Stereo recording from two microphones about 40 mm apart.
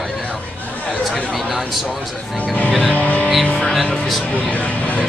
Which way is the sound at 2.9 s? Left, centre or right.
Left.